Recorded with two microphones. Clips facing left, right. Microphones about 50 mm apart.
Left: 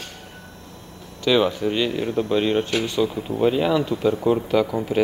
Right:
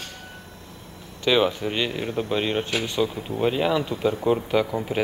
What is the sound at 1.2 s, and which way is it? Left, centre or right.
Speech, right.